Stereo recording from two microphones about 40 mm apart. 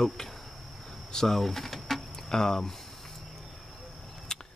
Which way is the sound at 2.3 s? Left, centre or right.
Centre.